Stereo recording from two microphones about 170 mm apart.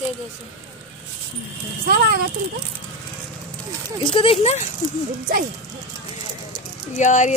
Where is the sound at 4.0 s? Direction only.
30° left (ahead or behind).